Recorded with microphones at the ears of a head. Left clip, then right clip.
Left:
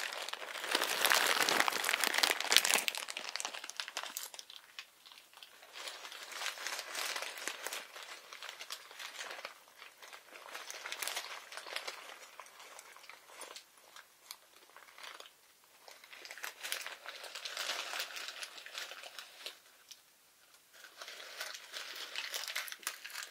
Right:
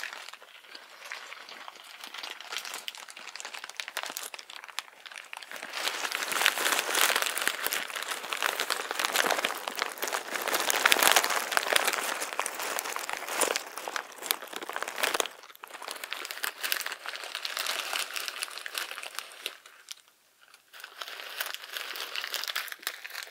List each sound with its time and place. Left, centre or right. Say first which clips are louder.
0.7 s a sound: left 13 dB; left
3.9 s crumpling: right 7 dB; right
5.7 s crumpling: right 15 dB; right
21.0 s crumpling: right 8 dB; right